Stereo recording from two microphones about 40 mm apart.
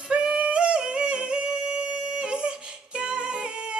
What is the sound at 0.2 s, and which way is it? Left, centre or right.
Yodeling, right.